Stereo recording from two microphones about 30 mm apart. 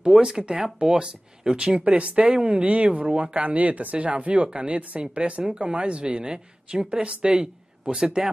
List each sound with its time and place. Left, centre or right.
0.0 s speech: right
2.0 s speech: right